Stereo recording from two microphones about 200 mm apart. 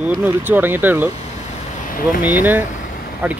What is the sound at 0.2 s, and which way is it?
Speech, 10° right (ahead or behind).